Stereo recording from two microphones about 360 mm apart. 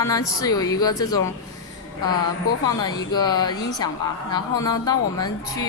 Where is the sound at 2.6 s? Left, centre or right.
Centre.